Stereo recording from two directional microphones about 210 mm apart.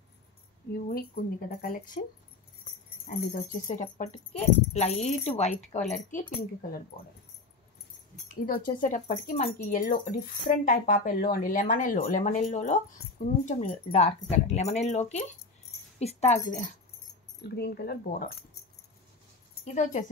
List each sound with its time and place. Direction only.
0.8 s speech: 45° left (ahead or behind)
3.1 s speech: 40° left (ahead or behind)
8.3 s speech: 45° left (ahead or behind)
17.4 s speech: 50° left (ahead or behind)
19.6 s a woman's voice: 35° left (ahead or behind)